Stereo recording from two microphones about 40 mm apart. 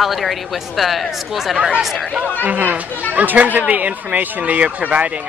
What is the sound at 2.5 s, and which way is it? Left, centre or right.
Speech, right.